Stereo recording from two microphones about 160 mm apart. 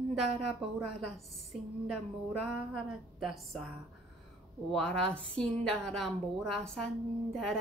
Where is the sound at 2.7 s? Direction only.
Centre (ahead or behind).